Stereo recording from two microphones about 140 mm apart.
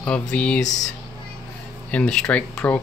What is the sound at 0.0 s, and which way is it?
Speech, 10° left (ahead or behind).